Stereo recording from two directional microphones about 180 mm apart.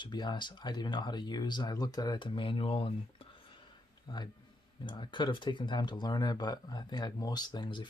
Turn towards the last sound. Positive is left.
turn(degrees=25)  # may be behind; listen again after turning